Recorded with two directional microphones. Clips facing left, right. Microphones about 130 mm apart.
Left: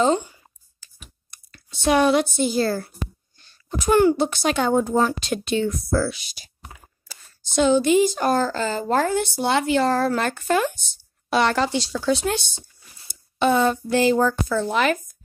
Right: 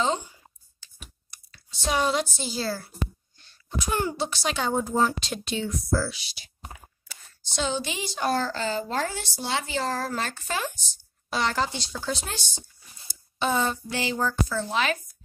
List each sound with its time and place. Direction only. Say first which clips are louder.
0.7 s computer keyboard: even; 50° left (ahead or behind)
3.8 s speech: left 11 dB; 60° left (ahead or behind)
7.5 s speech: left 13 dB; 55° left (ahead or behind)